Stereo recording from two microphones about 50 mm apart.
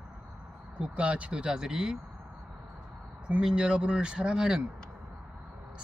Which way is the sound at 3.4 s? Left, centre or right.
Centre.